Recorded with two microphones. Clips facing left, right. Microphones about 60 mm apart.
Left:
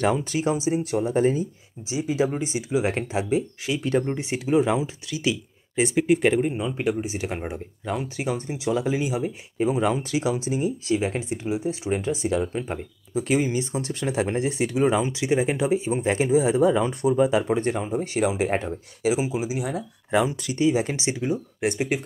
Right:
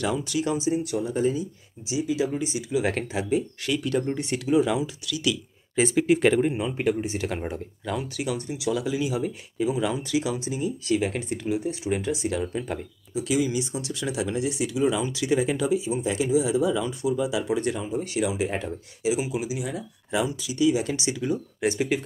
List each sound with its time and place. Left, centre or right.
0.0 s speech: left; by 4.4 s centre
4.5 s speech: left
5.8 s speech: centre
6.5 s speech: centre
6.9 s speech: centre
7.2 s speech: left
9.6 s speech: left; by 11.7 s centre
11.9 s speech: left
19.1 s speech: left